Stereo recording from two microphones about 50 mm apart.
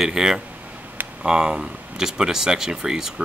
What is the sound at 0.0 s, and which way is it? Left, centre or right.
Speech, centre.